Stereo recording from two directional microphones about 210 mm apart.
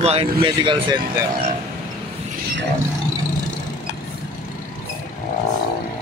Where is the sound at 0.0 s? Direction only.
30° right (ahead or behind).